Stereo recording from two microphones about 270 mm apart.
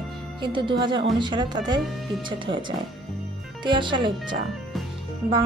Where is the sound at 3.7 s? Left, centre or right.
Centre.